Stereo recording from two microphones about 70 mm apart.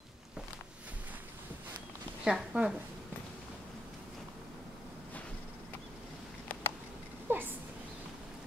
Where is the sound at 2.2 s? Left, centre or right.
Centre.